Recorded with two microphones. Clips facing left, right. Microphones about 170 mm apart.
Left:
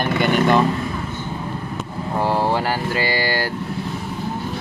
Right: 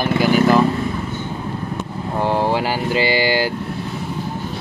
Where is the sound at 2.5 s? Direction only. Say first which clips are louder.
Right 2 dB; 15° right (ahead or behind).